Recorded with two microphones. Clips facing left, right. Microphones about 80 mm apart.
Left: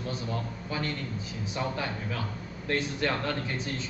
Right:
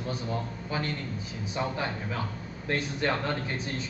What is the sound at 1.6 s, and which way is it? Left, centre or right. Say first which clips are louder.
A man's voice: right 1 dB; right.